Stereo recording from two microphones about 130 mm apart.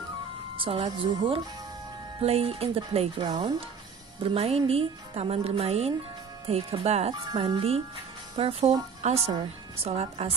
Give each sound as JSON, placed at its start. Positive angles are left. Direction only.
{"t": 0.6, "sound": "a woman's voice", "side_deg": -50}
{"t": 0.8, "sound": "speech", "side_deg": -35}
{"t": 2.2, "sound": "speech", "side_deg": -50}
{"t": 3.3, "sound": "speech", "side_deg": -35}
{"t": 4.2, "sound": "speech", "side_deg": -45}